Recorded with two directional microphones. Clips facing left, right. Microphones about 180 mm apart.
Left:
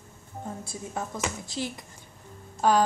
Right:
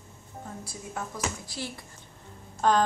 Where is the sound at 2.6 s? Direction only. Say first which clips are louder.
Left 1 dB; 10° left (ahead or behind).